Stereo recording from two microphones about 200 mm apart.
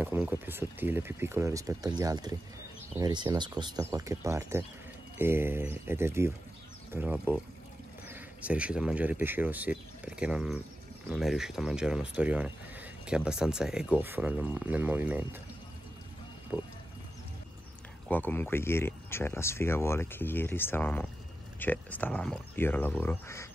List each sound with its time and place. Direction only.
0.0 s speech: 10° right (ahead or behind)
16.5 s speech: 5° right (ahead or behind)
18.0 s speech: 10° left (ahead or behind)